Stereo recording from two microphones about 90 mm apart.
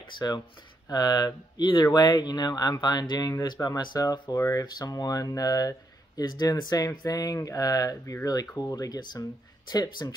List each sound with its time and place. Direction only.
0.2 s speech: 45° left (ahead or behind)